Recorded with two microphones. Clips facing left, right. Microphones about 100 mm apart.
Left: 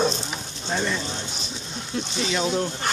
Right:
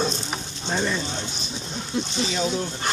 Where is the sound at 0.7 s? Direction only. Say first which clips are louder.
Right 1 dB; 5° right (ahead or behind).